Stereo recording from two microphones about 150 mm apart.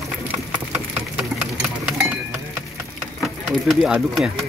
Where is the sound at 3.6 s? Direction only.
Centre (ahead or behind).